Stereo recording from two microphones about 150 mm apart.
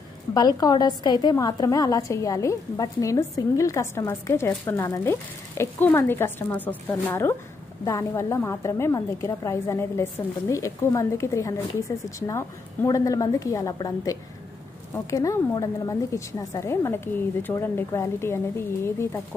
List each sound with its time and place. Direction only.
0.3 s a woman's voice: 25° left (ahead or behind)